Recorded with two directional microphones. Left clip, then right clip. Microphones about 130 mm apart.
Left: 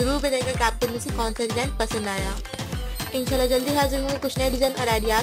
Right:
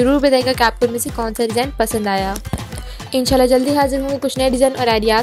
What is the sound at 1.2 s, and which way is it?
Speech, 40° right (ahead or behind).